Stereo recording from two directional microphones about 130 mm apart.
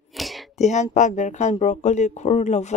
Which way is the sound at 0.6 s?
65° left (ahead or behind).